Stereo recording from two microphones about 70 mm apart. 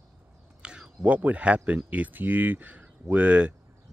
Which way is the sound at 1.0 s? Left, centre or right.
Right.